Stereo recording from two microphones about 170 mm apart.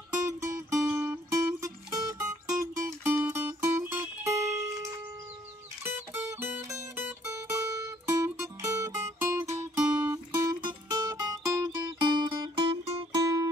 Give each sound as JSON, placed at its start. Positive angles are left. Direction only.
{"t": 0.1, "sound": "music", "side_deg": -20}
{"t": 2.5, "sound": "music", "side_deg": -10}
{"t": 5.9, "sound": "music", "side_deg": -10}
{"t": 10.1, "sound": "music", "side_deg": -20}